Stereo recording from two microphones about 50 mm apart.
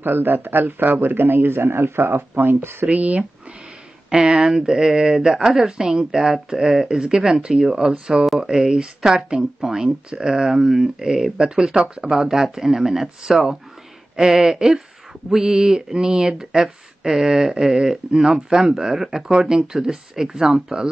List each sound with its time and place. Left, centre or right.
0.0 s speech: right
2.9 s speech: right
4.1 s speech: centre